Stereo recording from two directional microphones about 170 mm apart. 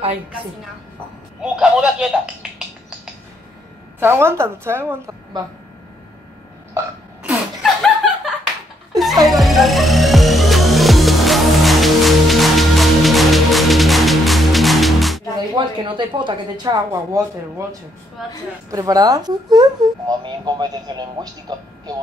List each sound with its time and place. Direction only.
1.4 s a woman's voice: 5° right (ahead or behind)
4.0 s a woman's voice: 15° right (ahead or behind)
7.2 s laughter: centre (ahead or behind)
9.3 s music: centre (ahead or behind)
15.3 s speech: 25° right (ahead or behind)
18.2 s a woman's voice: centre (ahead or behind)
18.7 s speech: 20° right (ahead or behind)